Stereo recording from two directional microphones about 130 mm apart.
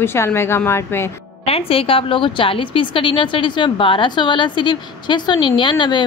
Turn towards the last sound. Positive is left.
turn(degrees=35)  # may be behind; listen again after turning